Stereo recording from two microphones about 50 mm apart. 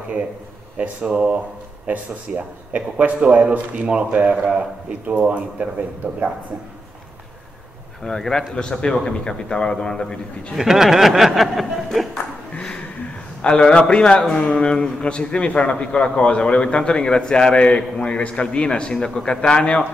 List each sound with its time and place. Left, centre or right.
0.7 s a man's voice: right
8.0 s speech: centre
10.5 s speech: centre
12.1 s music: centre
13.4 s speech: centre
14.2 s a man's voice: centre